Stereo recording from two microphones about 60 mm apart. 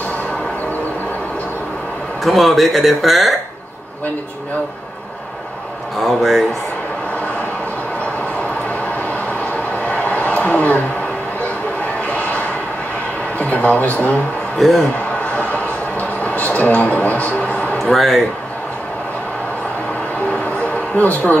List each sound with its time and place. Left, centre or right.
2.2 s speech: centre
5.9 s speech: centre
8.6 s vehicle: left
13.4 s speech: left
14.6 s speech: centre
15.3 s a sound: left
17.9 s speech: centre
20.4 s a sound: left